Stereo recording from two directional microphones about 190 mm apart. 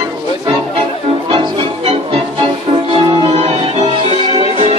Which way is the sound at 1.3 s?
30° right (ahead or behind).